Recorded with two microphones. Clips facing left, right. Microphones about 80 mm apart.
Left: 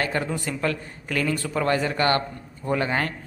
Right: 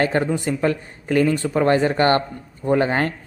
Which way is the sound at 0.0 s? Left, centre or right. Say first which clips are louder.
Right 6 dB; right.